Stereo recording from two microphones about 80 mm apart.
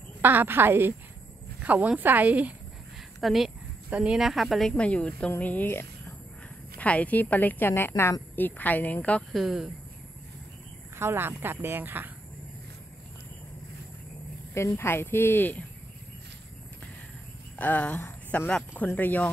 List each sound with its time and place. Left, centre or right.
0.2 s speech: right
3.2 s a sound: centre
3.9 s speech: centre
4.7 s speech: centre
6.8 s a woman's voice: centre; by 8.2 s left
8.4 s a woman's voice: left
9.3 s speech: centre
11.0 s speech: right
14.5 s a woman's voice: left
17.6 s a woman's voice: centre